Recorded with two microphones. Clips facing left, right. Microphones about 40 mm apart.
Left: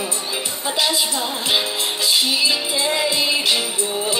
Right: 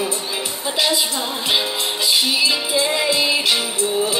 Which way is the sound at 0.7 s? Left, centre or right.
Centre.